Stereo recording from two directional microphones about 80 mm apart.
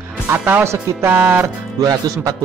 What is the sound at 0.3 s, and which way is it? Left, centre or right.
Speech, right.